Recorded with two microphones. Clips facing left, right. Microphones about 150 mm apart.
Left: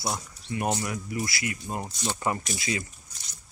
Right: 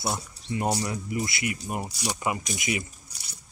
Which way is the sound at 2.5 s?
20° right (ahead or behind).